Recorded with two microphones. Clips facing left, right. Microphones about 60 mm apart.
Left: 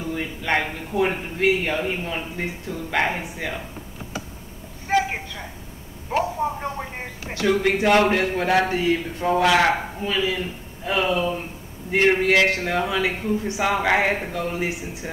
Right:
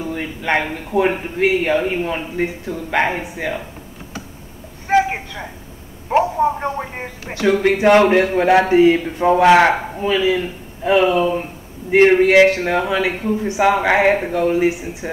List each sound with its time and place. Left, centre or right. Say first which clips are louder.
0.1 s a man's voice: right 3 dB; right
4.8 s a sound: right 6 dB; right
6.0 s a man's voice: right 7 dB; right
12.1 s speech: right 7 dB; centre
12.6 s a man's voice: right 5 dB; right